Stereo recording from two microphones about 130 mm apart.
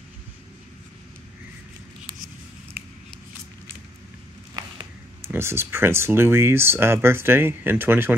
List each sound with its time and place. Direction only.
5.2 s speech: 20° right (ahead or behind)